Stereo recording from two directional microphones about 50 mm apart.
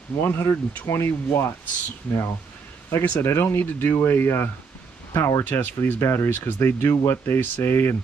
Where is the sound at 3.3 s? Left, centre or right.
Left.